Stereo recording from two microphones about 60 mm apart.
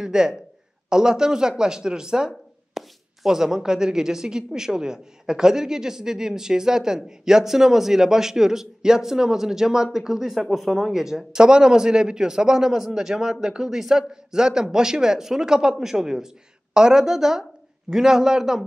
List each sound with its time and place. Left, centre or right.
0.0 s speech: centre